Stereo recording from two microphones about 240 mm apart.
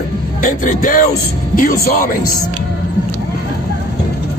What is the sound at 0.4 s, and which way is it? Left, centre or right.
Speech, left.